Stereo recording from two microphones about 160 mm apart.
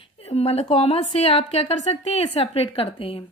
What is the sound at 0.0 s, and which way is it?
A woman's voice, 40° left (ahead or behind).